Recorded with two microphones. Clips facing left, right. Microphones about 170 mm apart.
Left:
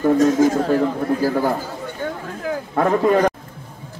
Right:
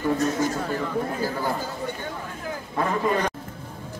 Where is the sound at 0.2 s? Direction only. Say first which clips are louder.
Left 9 dB; 90° left.